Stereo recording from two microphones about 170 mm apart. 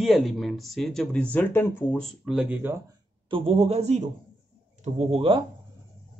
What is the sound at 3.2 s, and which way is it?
Speech, 30° right (ahead or behind).